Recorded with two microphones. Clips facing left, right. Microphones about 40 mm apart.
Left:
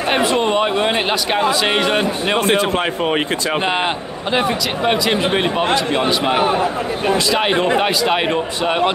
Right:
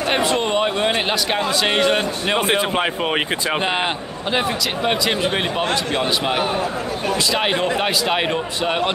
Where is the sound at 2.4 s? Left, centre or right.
Centre.